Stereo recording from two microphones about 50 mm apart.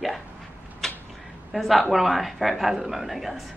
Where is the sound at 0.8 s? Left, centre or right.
Centre.